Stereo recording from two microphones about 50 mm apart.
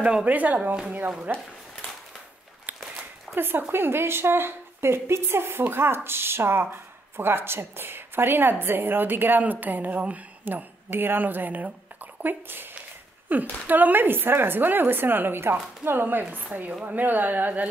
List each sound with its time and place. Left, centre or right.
0.0 s a woman's voice: right
3.3 s a woman's voice: right